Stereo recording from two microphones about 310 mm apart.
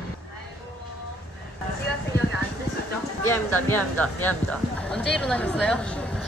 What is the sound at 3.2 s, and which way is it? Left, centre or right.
A woman's voice, centre.